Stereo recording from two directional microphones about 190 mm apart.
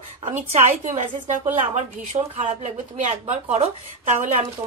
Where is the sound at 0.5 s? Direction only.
40° right (ahead or behind).